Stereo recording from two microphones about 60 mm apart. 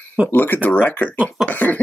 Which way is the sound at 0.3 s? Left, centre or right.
Left.